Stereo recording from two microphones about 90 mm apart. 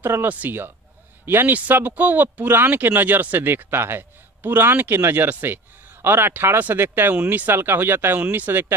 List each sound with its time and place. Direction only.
0.0 s speech: 25° right (ahead or behind)